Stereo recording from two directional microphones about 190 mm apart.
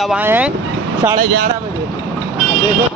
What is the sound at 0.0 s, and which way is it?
Speech, 5° right (ahead or behind).